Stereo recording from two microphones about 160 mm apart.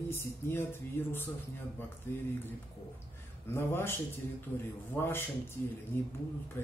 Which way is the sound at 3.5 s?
15° left (ahead or behind).